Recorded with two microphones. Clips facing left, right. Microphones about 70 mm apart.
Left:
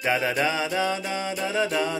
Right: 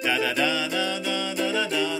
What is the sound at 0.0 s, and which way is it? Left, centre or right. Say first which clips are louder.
Mantra: left 1 dB; left.